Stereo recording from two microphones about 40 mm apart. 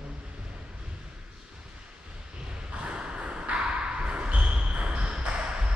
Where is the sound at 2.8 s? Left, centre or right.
Right.